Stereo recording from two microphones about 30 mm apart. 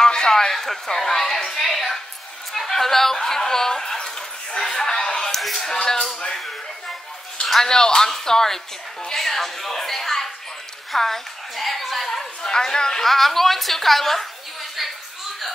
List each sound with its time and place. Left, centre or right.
0.0 s speech: left
3.2 s a sound: centre
5.7 s speech: centre
7.6 s speech: centre
12.1 s speech: centre
13.0 s speech: centre